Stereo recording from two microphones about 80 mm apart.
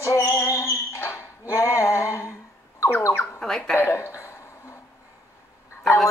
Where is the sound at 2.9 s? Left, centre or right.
Left.